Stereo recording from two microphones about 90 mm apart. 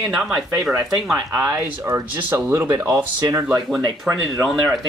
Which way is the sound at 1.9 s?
25° right (ahead or behind).